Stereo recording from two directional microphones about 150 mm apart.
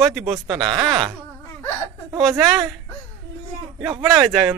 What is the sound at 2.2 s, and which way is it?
Speech, centre (ahead or behind).